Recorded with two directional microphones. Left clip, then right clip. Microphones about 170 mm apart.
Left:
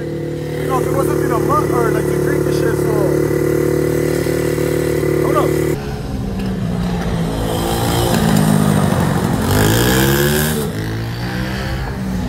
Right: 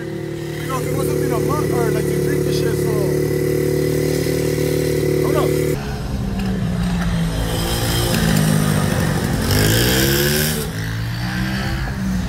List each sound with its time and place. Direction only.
4.2 s motorcycle: 60° left (ahead or behind)
4.6 s vehicle: centre (ahead or behind)
7.8 s music: centre (ahead or behind)
8.3 s vehicle: 40° left (ahead or behind)
9.8 s vehicle: 40° left (ahead or behind)